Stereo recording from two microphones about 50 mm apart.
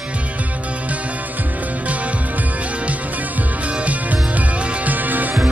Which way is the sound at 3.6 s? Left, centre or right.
Right.